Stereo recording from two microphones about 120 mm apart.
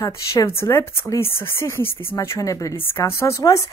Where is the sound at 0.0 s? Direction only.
20° left (ahead or behind).